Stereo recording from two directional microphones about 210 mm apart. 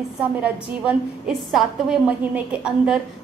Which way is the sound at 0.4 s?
5° right (ahead or behind).